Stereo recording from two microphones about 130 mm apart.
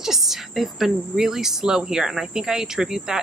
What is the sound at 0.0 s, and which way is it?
Speech, 5° right (ahead or behind).